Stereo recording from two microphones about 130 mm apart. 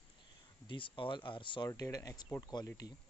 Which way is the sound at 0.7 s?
40° left (ahead or behind).